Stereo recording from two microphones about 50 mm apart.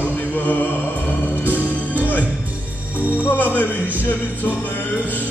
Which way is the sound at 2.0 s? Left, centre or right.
Left.